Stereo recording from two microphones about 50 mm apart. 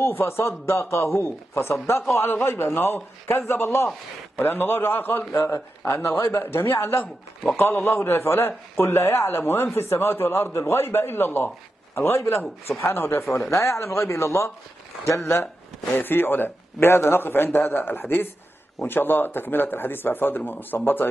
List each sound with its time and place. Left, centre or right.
0.0 s a man's voice: left
1.2 s a man's voice: left
2.4 s a man's voice: left
6.0 s a man's voice: left
13.5 s a man's voice: left
16.0 s a man's voice: left